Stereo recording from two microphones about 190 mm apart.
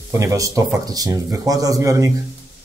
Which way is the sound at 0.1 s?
15° right (ahead or behind).